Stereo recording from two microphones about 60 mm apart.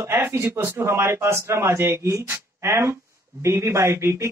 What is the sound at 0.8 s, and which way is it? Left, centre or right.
Speech, right.